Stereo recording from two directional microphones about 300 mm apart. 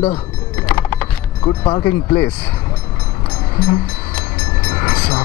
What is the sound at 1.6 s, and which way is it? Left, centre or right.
Speech, centre.